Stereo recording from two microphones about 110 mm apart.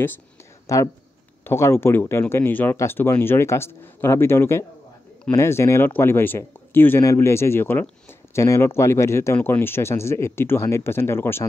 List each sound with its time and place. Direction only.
0.7 s speech: 30° left (ahead or behind)